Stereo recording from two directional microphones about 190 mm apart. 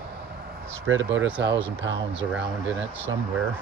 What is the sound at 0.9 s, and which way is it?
Speech, 90° right.